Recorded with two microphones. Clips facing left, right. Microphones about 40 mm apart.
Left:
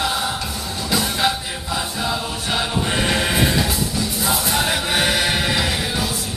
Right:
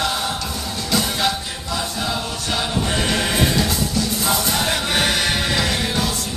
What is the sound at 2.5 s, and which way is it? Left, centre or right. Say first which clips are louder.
Choir: left 1 dB; centre.